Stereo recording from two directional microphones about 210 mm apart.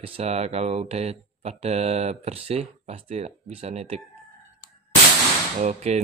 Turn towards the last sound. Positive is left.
turn(degrees=-35)  # may be behind; listen again after turning